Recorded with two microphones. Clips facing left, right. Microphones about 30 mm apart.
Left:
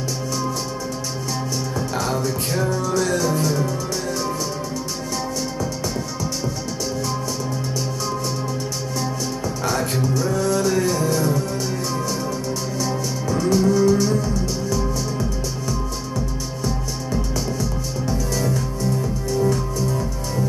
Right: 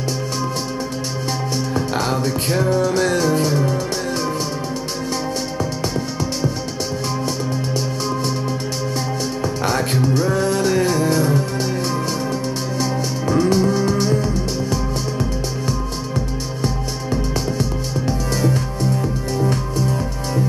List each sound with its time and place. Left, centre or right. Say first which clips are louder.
2.0 s music: even; right
9.7 s music: right 2 dB; right
12.8 s music: right 4 dB; right